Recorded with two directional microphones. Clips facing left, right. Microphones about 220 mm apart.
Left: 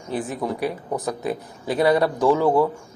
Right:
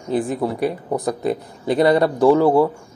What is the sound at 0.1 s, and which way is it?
Speech, 10° right (ahead or behind).